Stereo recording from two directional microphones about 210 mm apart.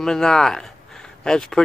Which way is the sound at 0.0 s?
Centre (ahead or behind).